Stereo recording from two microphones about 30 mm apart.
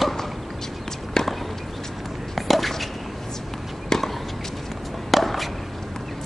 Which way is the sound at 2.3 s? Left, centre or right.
Centre.